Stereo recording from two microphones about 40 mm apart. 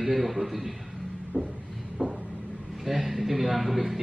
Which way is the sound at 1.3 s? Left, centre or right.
Right.